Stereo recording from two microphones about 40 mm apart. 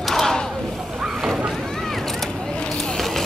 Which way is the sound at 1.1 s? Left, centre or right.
Centre.